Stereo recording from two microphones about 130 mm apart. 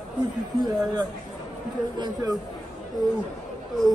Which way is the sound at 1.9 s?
35° right (ahead or behind).